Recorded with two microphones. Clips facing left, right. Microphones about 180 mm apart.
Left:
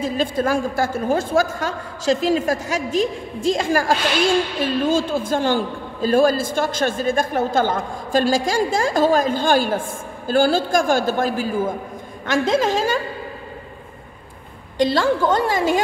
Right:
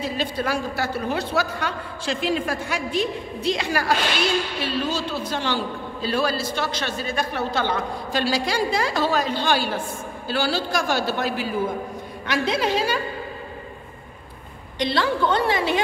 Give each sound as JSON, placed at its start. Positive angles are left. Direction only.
{"t": 0.0, "sound": "a man's voice", "side_deg": 50}
{"t": 14.8, "sound": "a man's voice", "side_deg": 45}